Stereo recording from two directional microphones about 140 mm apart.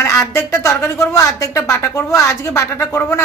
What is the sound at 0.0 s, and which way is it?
Speech, 20° left (ahead or behind).